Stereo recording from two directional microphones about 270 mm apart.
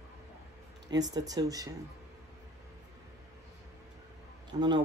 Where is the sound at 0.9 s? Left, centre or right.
Centre.